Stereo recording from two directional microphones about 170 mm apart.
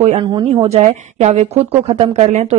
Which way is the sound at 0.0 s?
35° right (ahead or behind).